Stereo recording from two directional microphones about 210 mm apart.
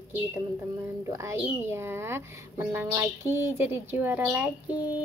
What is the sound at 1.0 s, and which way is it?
A woman's voice, 15° right (ahead or behind).